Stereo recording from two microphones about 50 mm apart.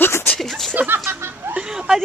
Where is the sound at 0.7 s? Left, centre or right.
Right.